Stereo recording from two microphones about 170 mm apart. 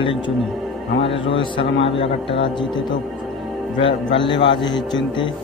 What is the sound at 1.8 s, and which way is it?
Speech, 30° left (ahead or behind).